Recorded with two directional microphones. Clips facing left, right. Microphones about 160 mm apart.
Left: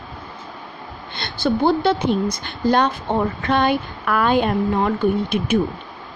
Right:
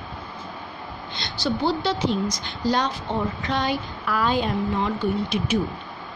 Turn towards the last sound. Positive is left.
turn(degrees=55)  # may be behind; listen again after turning